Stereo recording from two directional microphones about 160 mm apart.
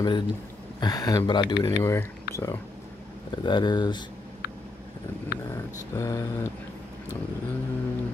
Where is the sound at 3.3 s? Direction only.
30° left (ahead or behind).